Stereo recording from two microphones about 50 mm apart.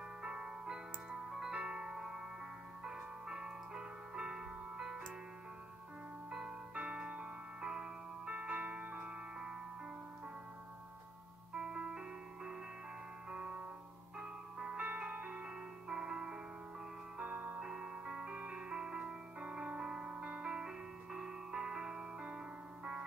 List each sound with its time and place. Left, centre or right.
0.2 s music: centre
6.3 s music: centre
11.5 s music: centre
13.3 s music: right
14.9 s music: right
15.9 s music: centre